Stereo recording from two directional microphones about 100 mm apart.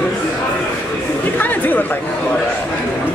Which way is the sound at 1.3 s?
20° left (ahead or behind).